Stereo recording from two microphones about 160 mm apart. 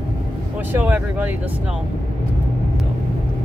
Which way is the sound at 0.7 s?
10° right (ahead or behind).